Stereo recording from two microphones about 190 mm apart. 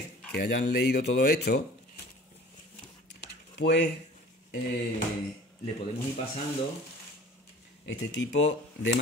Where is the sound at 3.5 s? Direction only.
65° left (ahead or behind).